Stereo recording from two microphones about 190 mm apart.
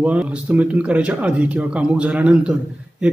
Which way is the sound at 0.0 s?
5° right (ahead or behind).